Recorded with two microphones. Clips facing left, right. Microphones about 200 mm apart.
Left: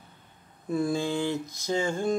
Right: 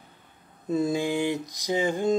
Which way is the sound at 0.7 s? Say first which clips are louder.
Right 2 dB; 20° right (ahead or behind).